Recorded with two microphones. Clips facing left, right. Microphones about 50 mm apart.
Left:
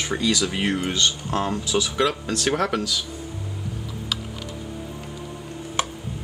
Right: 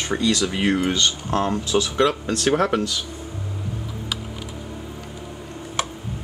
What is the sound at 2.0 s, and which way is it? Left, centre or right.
Speech, centre.